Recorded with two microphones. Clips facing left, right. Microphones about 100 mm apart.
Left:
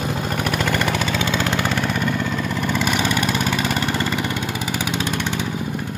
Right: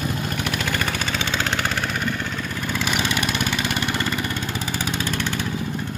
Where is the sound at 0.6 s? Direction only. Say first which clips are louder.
Left 5 dB; 90° left.